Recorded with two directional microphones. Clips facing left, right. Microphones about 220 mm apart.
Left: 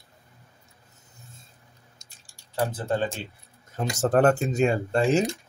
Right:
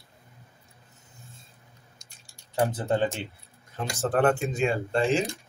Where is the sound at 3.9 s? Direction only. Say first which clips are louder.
Left 3 dB; 40° left (ahead or behind).